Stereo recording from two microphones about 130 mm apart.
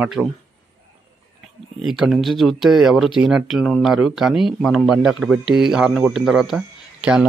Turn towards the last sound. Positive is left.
turn(degrees=-5)  # may be behind; listen again after turning